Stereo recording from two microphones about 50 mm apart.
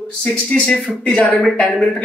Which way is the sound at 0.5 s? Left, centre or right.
Centre.